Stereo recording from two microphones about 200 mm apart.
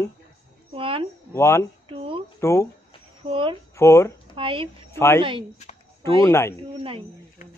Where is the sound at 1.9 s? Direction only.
25° right (ahead or behind).